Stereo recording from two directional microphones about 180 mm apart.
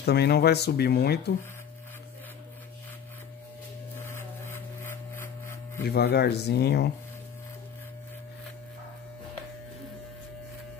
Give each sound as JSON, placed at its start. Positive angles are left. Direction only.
{"t": 0.0, "sound": "speech", "side_deg": 65}
{"t": 4.0, "sound": "a sound", "side_deg": 15}
{"t": 5.9, "sound": "speech", "side_deg": 65}